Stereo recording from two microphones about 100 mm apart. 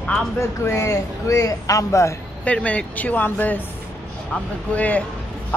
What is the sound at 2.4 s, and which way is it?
Speech, 15° left (ahead or behind).